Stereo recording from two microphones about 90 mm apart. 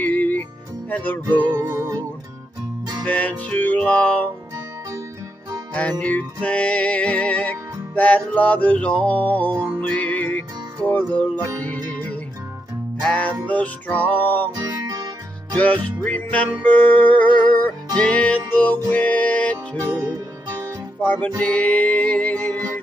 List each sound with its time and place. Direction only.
0.0 s music: 20° left (ahead or behind)
1.6 s music: 35° right (ahead or behind)
3.1 s music: 15° left (ahead or behind)
5.8 s music: 15° left (ahead or behind)
13.0 s music: 15° left (ahead or behind)
14.5 s guitar: 40° right (ahead or behind)
15.5 s music: 15° left (ahead or behind)
21.4 s music: 15° left (ahead or behind)